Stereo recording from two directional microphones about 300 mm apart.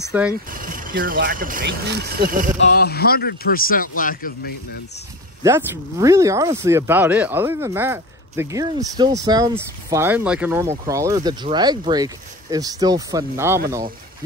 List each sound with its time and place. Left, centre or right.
0.1 s speech: centre
0.5 s speech: right
2.6 s speech: left
5.4 s speech: centre